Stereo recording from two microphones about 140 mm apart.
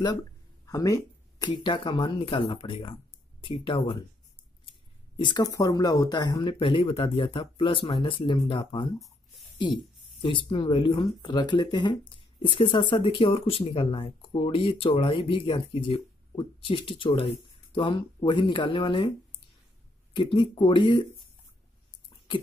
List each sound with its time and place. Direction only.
0.7 s speech: 25° left (ahead or behind)
5.1 s speech: 35° left (ahead or behind)
20.1 s speech: 35° left (ahead or behind)